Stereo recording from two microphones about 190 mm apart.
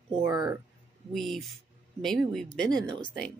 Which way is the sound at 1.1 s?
Centre (ahead or behind).